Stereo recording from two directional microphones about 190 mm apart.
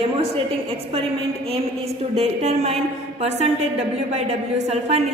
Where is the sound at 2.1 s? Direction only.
35° right (ahead or behind).